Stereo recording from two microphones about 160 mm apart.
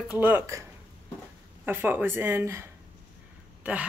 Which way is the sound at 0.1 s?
10° right (ahead or behind).